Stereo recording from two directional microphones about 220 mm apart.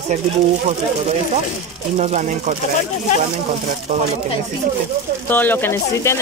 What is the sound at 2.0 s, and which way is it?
Speech, 30° right (ahead or behind).